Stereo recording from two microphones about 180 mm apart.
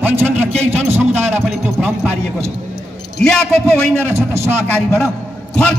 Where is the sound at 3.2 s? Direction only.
5° left (ahead or behind).